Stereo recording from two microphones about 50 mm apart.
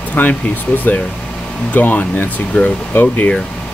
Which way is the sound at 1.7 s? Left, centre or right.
Left.